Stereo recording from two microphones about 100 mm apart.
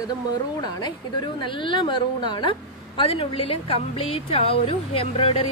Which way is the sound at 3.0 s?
65° left (ahead or behind).